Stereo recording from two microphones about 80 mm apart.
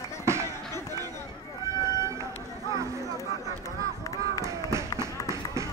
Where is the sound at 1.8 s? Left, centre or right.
Right.